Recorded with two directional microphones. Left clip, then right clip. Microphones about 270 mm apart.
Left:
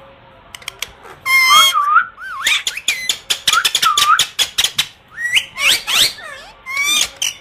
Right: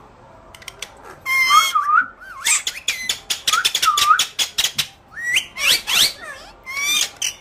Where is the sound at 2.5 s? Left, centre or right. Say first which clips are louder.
Left 5 dB; centre.